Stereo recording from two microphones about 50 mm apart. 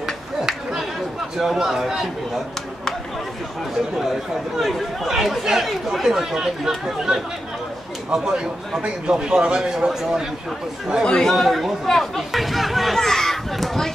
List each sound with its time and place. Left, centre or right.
1.4 s a man's voice: centre
4.0 s a man's voice: centre
11.2 s speech: centre